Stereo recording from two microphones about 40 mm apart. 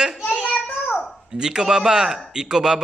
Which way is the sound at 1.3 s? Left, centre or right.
Centre.